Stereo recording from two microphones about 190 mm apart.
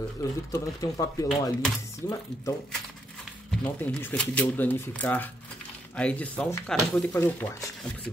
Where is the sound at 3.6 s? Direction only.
10° left (ahead or behind).